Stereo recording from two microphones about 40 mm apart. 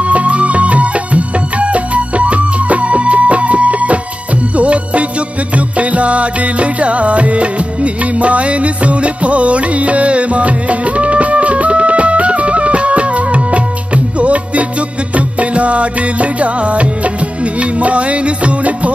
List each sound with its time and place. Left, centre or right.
0.0 s music: right